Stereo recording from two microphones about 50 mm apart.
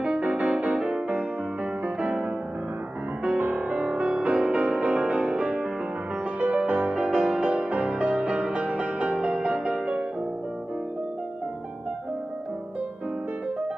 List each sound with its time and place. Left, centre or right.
0.4 s music: right
0.7 s music: centre
3.5 s music: right